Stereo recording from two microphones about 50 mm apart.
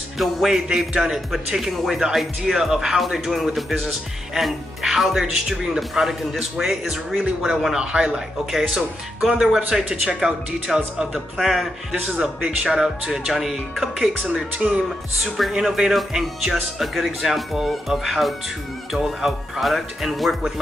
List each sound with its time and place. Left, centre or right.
0.2 s speech: centre
11.3 s speech: centre
11.9 s speech: centre
14.2 s speech: right
15.1 s speech: centre